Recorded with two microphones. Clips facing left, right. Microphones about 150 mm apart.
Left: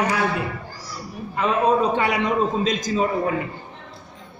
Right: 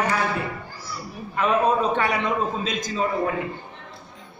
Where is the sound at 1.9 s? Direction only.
15° left (ahead or behind).